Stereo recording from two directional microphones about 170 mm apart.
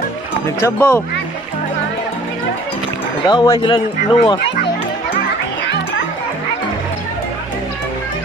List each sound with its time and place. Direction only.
0.6 s speech: 15° left (ahead or behind)
3.3 s speech: 25° left (ahead or behind)